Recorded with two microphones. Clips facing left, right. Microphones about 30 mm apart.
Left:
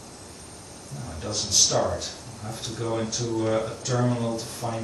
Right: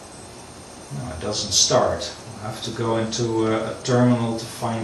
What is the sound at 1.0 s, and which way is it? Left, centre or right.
Speech, right.